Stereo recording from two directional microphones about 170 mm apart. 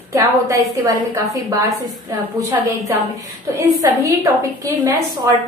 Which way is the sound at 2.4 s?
20° right (ahead or behind).